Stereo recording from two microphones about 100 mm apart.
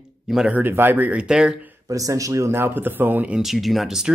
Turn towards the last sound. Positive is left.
turn(degrees=-5)  # may be behind; listen again after turning